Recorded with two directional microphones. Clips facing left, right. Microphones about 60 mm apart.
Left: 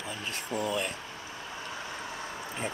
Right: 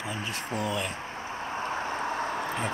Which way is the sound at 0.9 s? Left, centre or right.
Right.